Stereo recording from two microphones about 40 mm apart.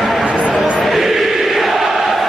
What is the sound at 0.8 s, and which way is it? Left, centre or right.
Chant, centre.